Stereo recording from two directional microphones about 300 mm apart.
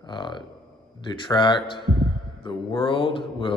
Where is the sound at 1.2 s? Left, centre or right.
Centre.